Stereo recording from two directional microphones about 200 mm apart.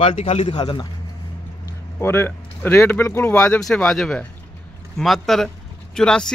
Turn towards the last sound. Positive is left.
turn(degrees=5)  # may be behind; listen again after turning